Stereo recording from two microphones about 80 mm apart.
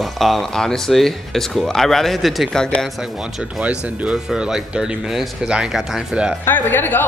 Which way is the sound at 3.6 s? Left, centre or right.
Centre.